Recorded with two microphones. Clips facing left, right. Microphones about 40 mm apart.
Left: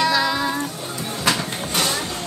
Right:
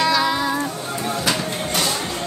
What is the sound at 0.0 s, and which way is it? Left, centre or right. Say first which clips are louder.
Child singing: right 1 dB; centre.